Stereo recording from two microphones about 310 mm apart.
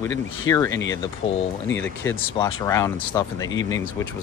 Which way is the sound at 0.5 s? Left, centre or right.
Centre.